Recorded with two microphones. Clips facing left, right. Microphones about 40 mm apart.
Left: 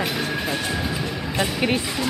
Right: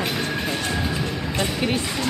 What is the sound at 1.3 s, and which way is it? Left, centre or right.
Speech, centre.